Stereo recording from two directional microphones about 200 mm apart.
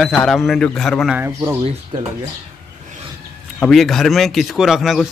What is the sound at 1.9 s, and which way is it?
Speech, 25° right (ahead or behind).